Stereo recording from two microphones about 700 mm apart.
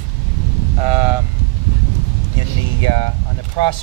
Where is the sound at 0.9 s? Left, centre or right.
Right.